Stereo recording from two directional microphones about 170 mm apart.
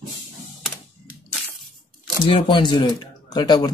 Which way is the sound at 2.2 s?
30° left (ahead or behind).